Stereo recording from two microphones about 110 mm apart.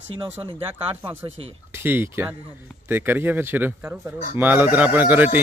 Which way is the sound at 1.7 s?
20° right (ahead or behind).